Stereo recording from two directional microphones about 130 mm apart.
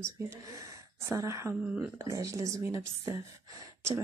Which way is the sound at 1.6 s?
10° right (ahead or behind).